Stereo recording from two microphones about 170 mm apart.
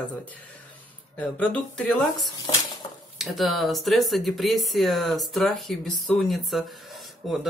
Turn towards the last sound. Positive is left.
turn(degrees=0)  # may be behind; listen again after turning